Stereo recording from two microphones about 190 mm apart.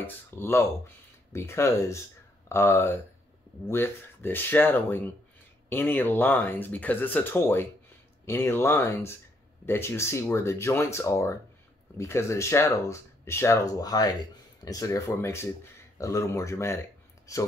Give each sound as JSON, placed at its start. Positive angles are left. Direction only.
{"t": 0.0, "sound": "speech", "side_deg": 10}